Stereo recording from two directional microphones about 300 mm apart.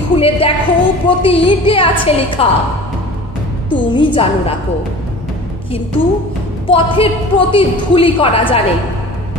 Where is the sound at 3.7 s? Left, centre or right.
Centre.